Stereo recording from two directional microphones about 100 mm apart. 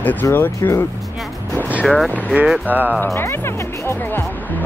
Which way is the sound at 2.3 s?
5° right (ahead or behind).